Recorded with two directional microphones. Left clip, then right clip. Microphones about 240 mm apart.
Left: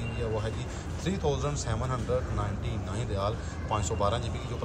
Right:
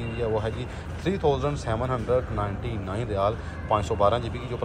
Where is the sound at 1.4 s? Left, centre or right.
Centre.